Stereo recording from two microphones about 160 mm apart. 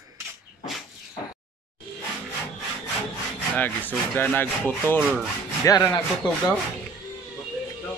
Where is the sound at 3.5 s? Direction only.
10° left (ahead or behind).